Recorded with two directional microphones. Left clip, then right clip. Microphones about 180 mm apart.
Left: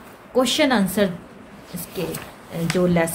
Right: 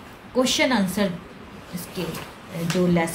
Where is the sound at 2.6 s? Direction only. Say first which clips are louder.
Left 3 dB; 55° left (ahead or behind).